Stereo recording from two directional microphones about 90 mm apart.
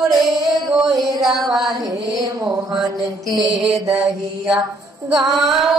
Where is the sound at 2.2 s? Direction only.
40° right (ahead or behind).